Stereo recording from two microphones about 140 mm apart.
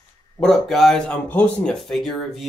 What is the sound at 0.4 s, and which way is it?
Speech, centre (ahead or behind).